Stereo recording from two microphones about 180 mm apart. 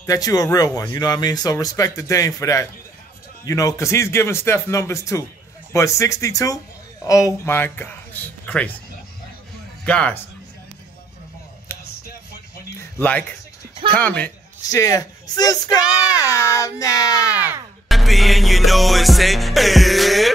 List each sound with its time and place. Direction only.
0.0 s speech: 20° left (ahead or behind)
9.8 s speech: 5° left (ahead or behind)
13.9 s speech: 10° left (ahead or behind)
14.7 s speech: 20° left (ahead or behind)
17.8 s music: centre (ahead or behind)